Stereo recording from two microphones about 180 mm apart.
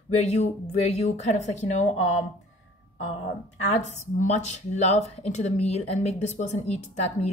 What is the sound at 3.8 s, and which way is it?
Speech, 40° left (ahead or behind).